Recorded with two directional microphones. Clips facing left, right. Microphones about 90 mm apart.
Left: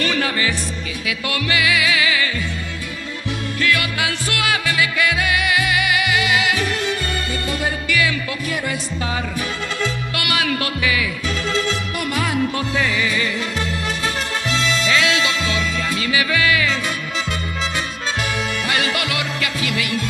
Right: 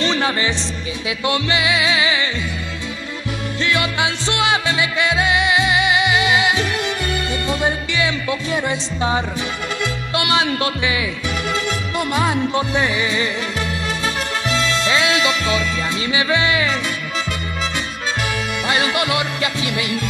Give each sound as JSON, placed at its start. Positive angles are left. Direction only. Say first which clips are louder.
{"t": 0.0, "sound": "music", "louder": "right 2 dB", "side_deg": -25}
{"t": 3.5, "sound": "music", "louder": "right 1 dB", "side_deg": -25}
{"t": 10.1, "sound": "speech", "louder": "right 6 dB", "side_deg": -25}
{"t": 12.0, "sound": "music", "louder": "right 3 dB", "side_deg": -25}
{"t": 14.9, "sound": "music", "louder": "right 1 dB", "side_deg": -25}
{"t": 18.7, "sound": "music", "louder": "right 5 dB", "side_deg": -25}